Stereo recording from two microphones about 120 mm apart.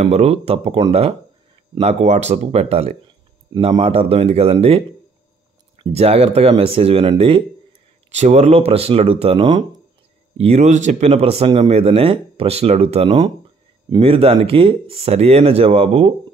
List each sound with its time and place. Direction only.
0.0 s speech: 60° right (ahead or behind)
1.8 s speech: 65° right (ahead or behind); by 7.4 s 50° right (ahead or behind)
8.1 s speech: 70° right (ahead or behind); by 9.8 s 35° right (ahead or behind)
10.4 s speech: 70° right (ahead or behind)
13.8 s speech: 45° right (ahead or behind)